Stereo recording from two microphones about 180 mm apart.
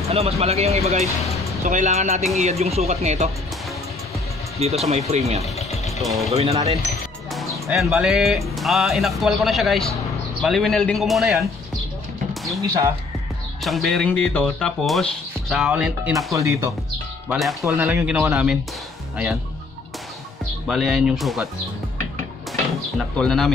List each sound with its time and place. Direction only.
0.1 s speech: 35° right (ahead or behind)
4.6 s speech: 35° right (ahead or behind)
6.0 s speech: centre (ahead or behind)
6.3 s speech: 35° right (ahead or behind)
7.3 s speech: centre (ahead or behind)
13.7 s speech: centre (ahead or behind)
16.3 s speech: 15° right (ahead or behind)
17.3 s speech: centre (ahead or behind)
17.6 s speech: 10° right (ahead or behind)
20.6 s speech: 5° right (ahead or behind)
22.9 s speech: 5° left (ahead or behind)